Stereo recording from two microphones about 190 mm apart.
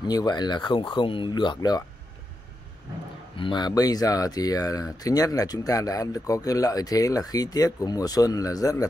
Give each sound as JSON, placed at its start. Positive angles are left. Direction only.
{"t": 0.0, "sound": "speech", "side_deg": 20}
{"t": 3.3, "sound": "speech", "side_deg": 25}